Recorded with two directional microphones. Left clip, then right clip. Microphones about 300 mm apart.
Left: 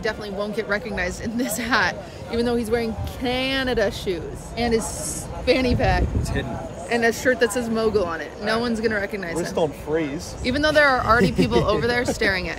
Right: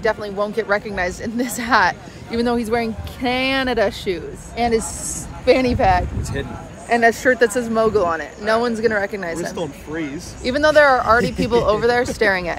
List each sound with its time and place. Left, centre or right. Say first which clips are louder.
0.0 s speech: right 6 dB; centre
9.4 s speech: left 3 dB; left
10.4 s speech: right 5 dB; centre